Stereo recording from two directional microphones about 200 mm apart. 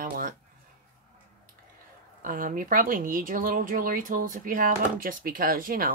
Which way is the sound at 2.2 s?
45° right (ahead or behind).